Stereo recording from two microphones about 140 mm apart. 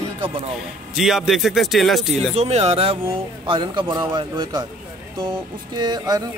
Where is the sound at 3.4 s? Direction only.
35° right (ahead or behind).